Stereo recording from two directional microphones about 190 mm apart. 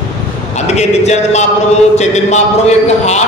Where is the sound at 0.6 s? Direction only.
35° left (ahead or behind).